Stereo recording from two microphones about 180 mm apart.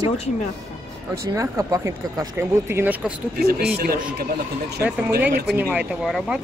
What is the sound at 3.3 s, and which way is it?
Speech, 60° right (ahead or behind).